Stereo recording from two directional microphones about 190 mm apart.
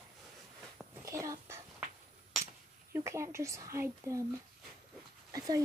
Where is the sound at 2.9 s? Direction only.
15° right (ahead or behind).